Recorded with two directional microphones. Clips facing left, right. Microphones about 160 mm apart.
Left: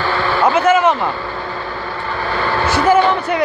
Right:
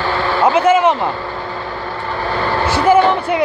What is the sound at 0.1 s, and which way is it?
Vehicle, 25° right (ahead or behind).